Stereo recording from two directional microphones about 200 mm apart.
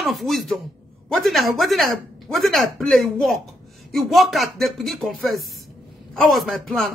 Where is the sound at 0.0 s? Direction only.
Centre (ahead or behind).